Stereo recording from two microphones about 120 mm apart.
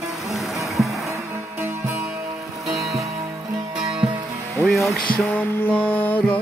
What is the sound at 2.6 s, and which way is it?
Music, centre (ahead or behind).